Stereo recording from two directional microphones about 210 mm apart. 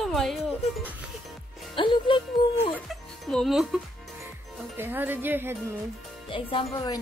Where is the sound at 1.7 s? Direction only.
25° left (ahead or behind).